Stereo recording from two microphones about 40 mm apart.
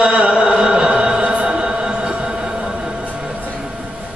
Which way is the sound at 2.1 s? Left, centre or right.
Right.